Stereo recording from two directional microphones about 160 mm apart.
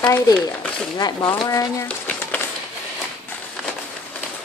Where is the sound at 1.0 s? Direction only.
25° left (ahead or behind).